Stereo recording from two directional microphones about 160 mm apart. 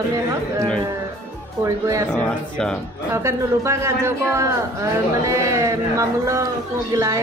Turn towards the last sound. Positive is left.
turn(degrees=-20)  # may be behind; listen again after turning